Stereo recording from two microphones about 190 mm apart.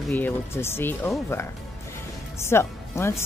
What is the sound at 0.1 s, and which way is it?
Speech, 10° left (ahead or behind).